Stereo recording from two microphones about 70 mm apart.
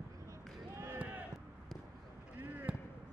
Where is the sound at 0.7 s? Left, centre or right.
Right.